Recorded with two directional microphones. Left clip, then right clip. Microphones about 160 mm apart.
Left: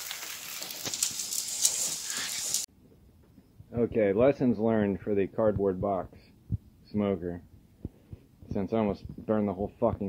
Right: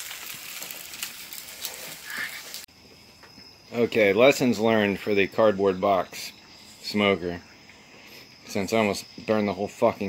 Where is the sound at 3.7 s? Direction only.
20° right (ahead or behind).